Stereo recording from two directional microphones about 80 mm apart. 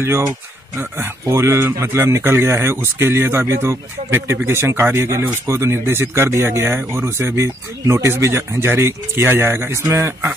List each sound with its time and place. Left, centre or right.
0.0 s a man's voice: right